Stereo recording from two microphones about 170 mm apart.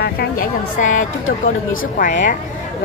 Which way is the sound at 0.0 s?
60° left (ahead or behind).